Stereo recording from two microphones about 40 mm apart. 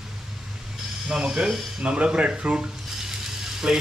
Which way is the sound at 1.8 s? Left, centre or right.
Right.